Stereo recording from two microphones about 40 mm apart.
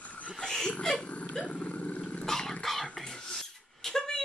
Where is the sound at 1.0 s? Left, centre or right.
Left.